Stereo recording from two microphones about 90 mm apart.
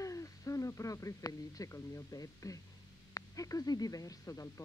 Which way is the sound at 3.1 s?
40° left (ahead or behind).